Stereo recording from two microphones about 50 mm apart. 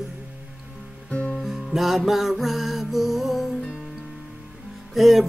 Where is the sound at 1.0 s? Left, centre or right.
Left.